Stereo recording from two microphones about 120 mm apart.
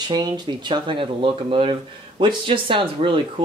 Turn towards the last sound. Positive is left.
turn(degrees=-45)  # may be behind; listen again after turning